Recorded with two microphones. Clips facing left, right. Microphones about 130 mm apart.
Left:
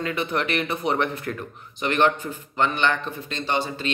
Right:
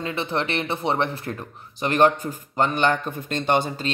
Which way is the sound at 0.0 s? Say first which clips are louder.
Even; 30° right (ahead or behind).